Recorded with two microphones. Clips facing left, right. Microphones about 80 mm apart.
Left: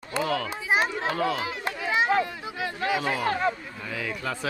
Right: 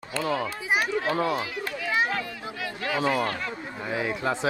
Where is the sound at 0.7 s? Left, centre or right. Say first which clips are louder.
Left 1 dB; left.